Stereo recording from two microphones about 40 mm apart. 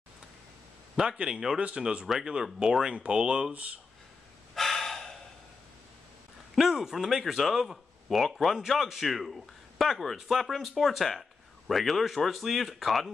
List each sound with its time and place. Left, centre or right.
0.9 s speech: right
2.0 s speech: centre
2.9 s speech: right
4.6 s breathing: centre
6.5 s speech: centre